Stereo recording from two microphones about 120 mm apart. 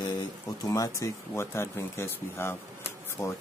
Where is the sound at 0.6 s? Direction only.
25° left (ahead or behind).